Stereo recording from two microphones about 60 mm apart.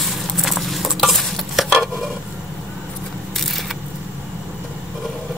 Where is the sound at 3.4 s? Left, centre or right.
Centre.